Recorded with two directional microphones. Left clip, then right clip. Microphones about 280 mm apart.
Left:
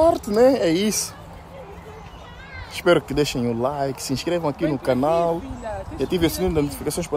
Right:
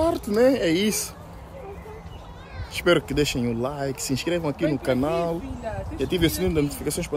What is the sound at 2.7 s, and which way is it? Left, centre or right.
Speech, centre.